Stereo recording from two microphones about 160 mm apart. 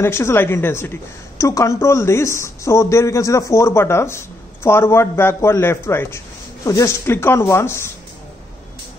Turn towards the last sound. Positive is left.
turn(degrees=15)  # may be behind; listen again after turning